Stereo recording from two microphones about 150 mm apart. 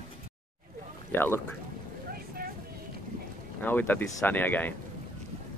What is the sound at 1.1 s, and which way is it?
Speech, 15° left (ahead or behind).